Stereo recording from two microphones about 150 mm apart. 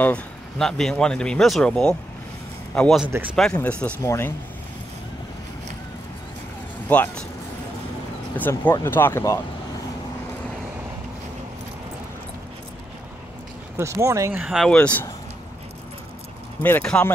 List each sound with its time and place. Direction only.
0.0 s a man's voice: 5° left (ahead or behind)
6.9 s speech: 10° left (ahead or behind)
8.4 s speech: 10° left (ahead or behind)
13.7 s speech: 20° right (ahead or behind)
14.4 s speech: centre (ahead or behind)
16.6 s speech: 10° left (ahead or behind)